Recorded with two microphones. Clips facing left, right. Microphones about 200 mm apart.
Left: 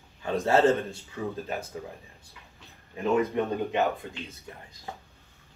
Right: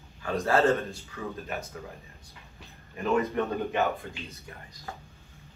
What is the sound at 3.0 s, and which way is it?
Speech, 15° left (ahead or behind).